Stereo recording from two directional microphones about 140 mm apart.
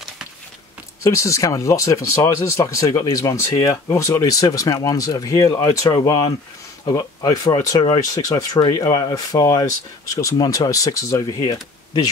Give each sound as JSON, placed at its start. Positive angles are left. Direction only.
{"t": 1.0, "sound": "speech", "side_deg": 20}